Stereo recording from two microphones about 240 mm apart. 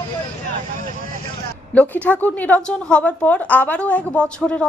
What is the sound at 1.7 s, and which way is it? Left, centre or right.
A woman's voice, centre.